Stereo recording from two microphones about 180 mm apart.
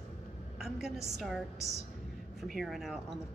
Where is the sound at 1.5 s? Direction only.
70° right (ahead or behind).